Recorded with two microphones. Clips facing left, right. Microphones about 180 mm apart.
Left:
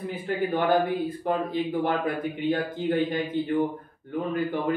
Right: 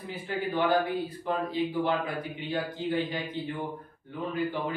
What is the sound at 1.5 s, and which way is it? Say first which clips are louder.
A man's voice: left 2 dB; 55° left (ahead or behind).